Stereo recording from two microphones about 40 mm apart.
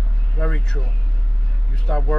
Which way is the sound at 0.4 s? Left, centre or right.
Left.